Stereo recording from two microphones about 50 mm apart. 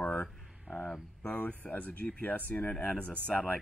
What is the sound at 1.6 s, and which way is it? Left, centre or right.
Speech, left.